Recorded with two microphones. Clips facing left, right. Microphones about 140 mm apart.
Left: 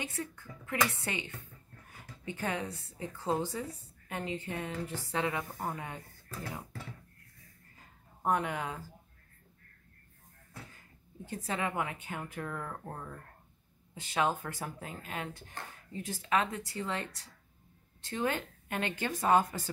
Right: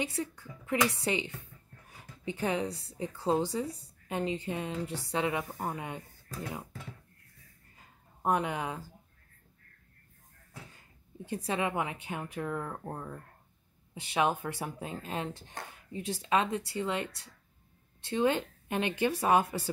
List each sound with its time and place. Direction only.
0.2 s a woman's voice: 15° right (ahead or behind)
8.2 s a woman's voice: 15° right (ahead or behind)
11.3 s a woman's voice: 15° right (ahead or behind)
14.9 s speech: 25° right (ahead or behind)
18.1 s a woman's voice: 20° right (ahead or behind)